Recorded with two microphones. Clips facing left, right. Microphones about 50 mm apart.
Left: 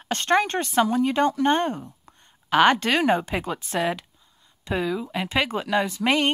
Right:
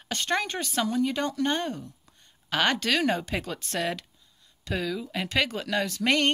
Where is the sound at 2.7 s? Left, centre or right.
Left.